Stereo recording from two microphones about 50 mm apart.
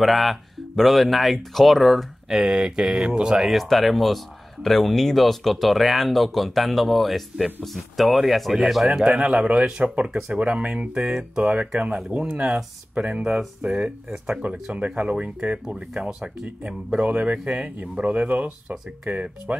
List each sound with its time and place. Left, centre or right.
0.0 s speech: centre
3.4 s speech: centre
8.8 s speech: centre
11.0 s speech: centre
11.4 s speech: right
14.4 s speech: right